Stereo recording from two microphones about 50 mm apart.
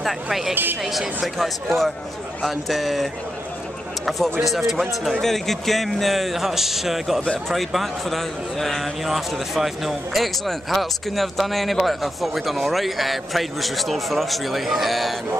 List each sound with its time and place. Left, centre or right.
0.0 s a man's voice: centre